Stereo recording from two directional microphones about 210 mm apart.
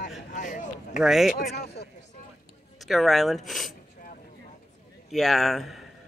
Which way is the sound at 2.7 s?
Centre (ahead or behind).